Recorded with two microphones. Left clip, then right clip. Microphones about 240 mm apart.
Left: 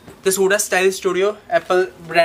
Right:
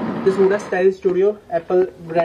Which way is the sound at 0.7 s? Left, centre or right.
Left.